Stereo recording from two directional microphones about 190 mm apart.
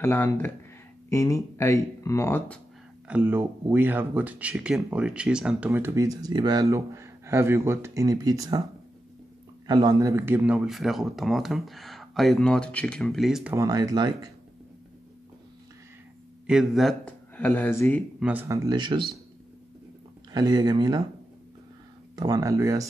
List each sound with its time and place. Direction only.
0.0 s speech: 10° left (ahead or behind)
3.1 s speech: 10° right (ahead or behind)
9.7 s speech: 20° right (ahead or behind)
16.4 s speech: centre (ahead or behind)
18.2 s speech: 10° right (ahead or behind)
20.3 s speech: 20° right (ahead or behind)
22.1 s speech: 20° right (ahead or behind)